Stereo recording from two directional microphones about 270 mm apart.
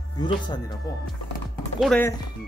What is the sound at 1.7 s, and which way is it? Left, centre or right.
Speech, centre.